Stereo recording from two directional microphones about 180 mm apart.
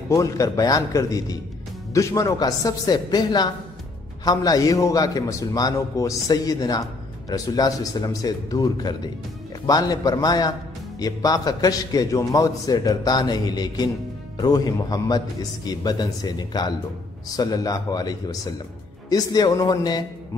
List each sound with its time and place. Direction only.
0.1 s a man's voice: 20° left (ahead or behind)